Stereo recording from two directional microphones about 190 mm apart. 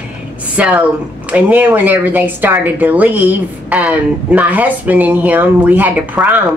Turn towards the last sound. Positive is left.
turn(degrees=-10)  # may be behind; listen again after turning